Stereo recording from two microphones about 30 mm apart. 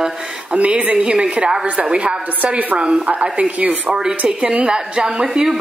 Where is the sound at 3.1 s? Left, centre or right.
Right.